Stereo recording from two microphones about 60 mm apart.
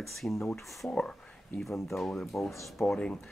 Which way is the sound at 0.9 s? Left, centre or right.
Centre.